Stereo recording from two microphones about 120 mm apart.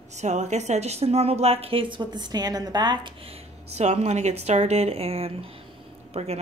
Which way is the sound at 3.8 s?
65° right (ahead or behind).